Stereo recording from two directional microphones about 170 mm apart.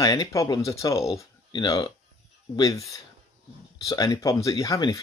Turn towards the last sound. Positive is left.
turn(degrees=20)  # may be behind; listen again after turning